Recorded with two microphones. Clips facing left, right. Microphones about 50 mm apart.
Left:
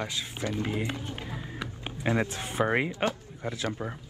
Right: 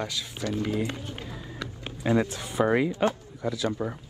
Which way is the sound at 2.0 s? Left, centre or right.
Left.